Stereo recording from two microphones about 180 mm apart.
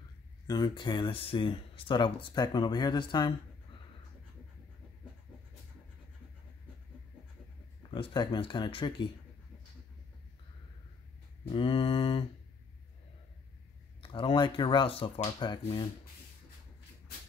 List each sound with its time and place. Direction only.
0.5 s speech: 25° left (ahead or behind)
7.9 s speech: 25° left (ahead or behind)
11.5 s speech: 30° left (ahead or behind)
14.0 s speech: 30° left (ahead or behind)